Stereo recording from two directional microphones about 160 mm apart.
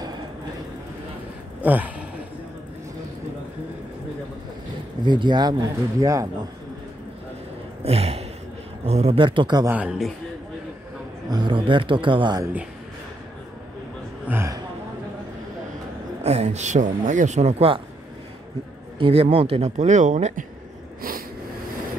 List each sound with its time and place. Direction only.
1.6 s speech: 10° right (ahead or behind)
5.0 s speech: 30° right (ahead or behind)
7.8 s gasp: 40° right (ahead or behind)
8.8 s speech: 40° right (ahead or behind)
9.7 s speech: 5° right (ahead or behind)
11.2 s speech: 30° right (ahead or behind)
14.2 s speech: 15° right (ahead or behind)
16.2 s speech: 45° right (ahead or behind)
18.9 s speech: 35° right (ahead or behind)